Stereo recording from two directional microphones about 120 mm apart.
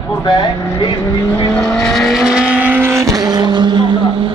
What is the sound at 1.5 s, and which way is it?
Vehicle, 5° left (ahead or behind).